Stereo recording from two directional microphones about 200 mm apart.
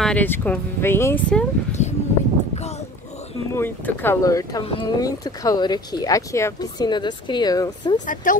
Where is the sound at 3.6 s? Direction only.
10° left (ahead or behind).